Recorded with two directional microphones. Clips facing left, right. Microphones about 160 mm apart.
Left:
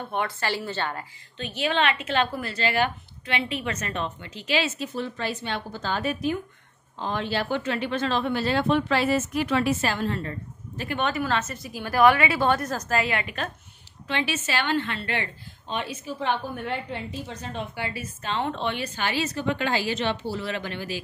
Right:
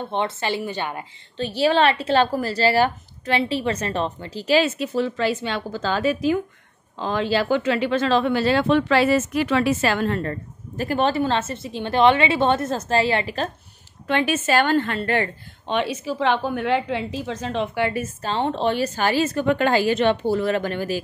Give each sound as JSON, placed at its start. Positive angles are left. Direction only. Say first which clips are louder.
{"t": 0.1, "sound": "a woman's voice", "louder": "right 3 dB", "side_deg": -20}
{"t": 1.3, "sound": "a woman's voice", "louder": "right 7 dB", "side_deg": -35}
{"t": 4.6, "sound": "speech", "louder": "right 7 dB", "side_deg": -75}
{"t": 10.8, "sound": "a woman's voice", "louder": "right 6 dB", "side_deg": -35}
{"t": 14.0, "sound": "a woman's voice", "louder": "right 7 dB", "side_deg": -50}
{"t": 15.6, "sound": "speech", "louder": "right 8 dB", "side_deg": -80}
{"t": 18.0, "sound": "a woman's voice", "louder": "right 5 dB", "side_deg": -35}